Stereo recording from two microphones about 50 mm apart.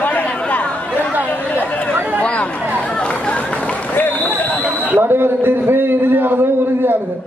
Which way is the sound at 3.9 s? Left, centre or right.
Left.